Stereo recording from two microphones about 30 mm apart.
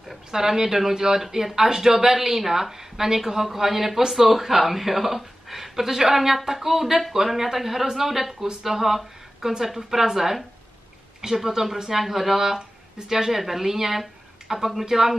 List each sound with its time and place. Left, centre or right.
0.3 s speech: centre
11.4 s speech: centre